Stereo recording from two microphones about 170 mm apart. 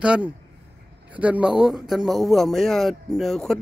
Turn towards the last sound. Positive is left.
turn(degrees=0)  # may be behind; listen again after turning